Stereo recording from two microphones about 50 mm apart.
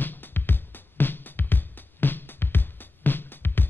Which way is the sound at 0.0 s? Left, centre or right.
Left.